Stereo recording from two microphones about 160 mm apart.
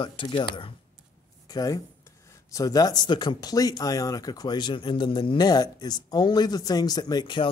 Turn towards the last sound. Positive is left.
turn(degrees=25)  # may be behind; listen again after turning